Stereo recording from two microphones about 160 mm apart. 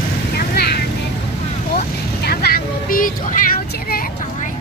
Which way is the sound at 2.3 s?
70° left (ahead or behind).